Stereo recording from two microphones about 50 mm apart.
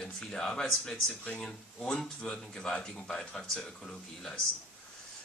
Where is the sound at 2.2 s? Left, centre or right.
Centre.